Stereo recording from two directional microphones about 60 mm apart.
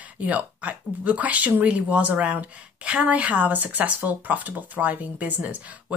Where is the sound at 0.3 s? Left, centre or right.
Right.